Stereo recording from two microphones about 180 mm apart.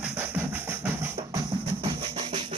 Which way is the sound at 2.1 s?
30° right (ahead or behind).